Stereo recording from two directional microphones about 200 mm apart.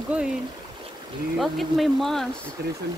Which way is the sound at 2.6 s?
55° right (ahead or behind).